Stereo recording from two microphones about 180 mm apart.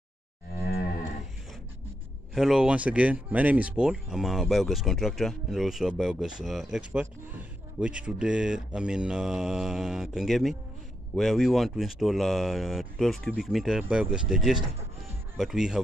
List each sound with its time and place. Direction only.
0.6 s livestock: 60° left (ahead or behind)
2.3 s speech: centre (ahead or behind)